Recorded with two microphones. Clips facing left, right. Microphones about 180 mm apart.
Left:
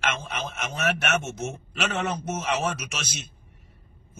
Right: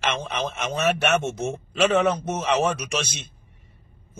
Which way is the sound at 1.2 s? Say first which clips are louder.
Right 5 dB; 30° right (ahead or behind).